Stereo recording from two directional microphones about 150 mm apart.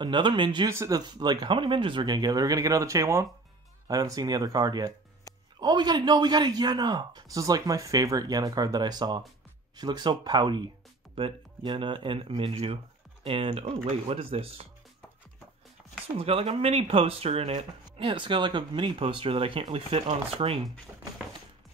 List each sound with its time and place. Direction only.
0.0 s a man's voice: 30° right (ahead or behind)
15.8 s music: 5° right (ahead or behind)
16.2 s speech: 40° right (ahead or behind)